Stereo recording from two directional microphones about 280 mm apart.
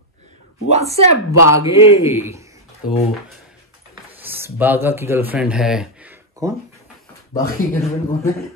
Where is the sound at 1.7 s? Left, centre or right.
Centre.